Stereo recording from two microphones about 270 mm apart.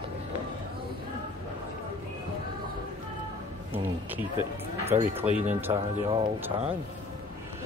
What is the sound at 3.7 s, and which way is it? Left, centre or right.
Speech, centre.